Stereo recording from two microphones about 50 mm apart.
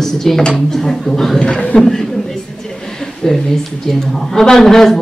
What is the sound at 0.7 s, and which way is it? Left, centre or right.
Speech, centre.